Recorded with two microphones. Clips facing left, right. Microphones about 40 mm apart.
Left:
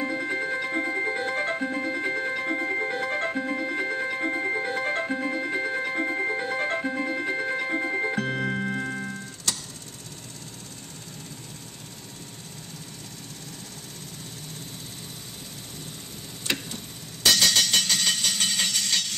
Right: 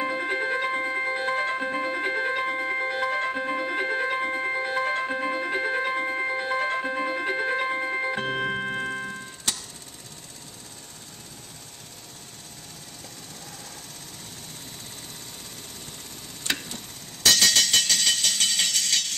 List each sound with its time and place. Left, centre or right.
0.0 s music: right
3.3 s music: right
4.2 s music: right
5.9 s music: centre
6.4 s music: right
17.3 s music: centre